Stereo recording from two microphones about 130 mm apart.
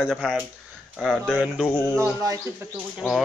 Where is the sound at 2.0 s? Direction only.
25° right (ahead or behind).